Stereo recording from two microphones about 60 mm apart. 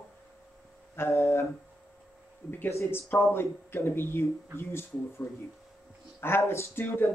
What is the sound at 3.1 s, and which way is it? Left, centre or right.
Speech, left.